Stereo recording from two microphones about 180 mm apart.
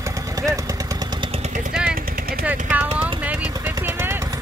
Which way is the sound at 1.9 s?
55° right (ahead or behind).